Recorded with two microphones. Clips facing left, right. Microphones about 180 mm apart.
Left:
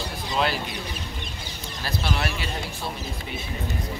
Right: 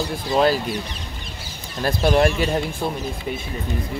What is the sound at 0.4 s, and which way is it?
Speech, 40° right (ahead or behind).